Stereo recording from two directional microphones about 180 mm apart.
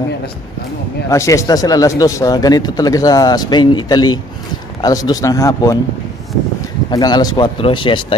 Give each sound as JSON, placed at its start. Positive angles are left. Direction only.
{"t": 1.1, "sound": "speech", "side_deg": 15}
{"t": 6.9, "sound": "speech", "side_deg": 20}